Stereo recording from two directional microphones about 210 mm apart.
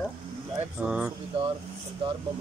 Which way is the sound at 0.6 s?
10° right (ahead or behind).